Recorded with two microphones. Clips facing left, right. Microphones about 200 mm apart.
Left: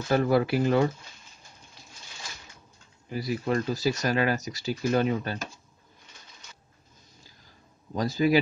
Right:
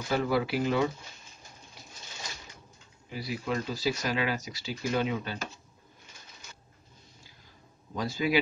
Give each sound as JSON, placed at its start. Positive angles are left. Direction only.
{"t": 0.1, "sound": "speech", "side_deg": 50}
{"t": 3.1, "sound": "speech", "side_deg": 45}
{"t": 7.9, "sound": "a man's voice", "side_deg": 40}